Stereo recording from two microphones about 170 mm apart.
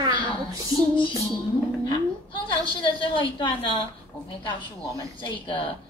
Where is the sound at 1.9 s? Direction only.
30° left (ahead or behind).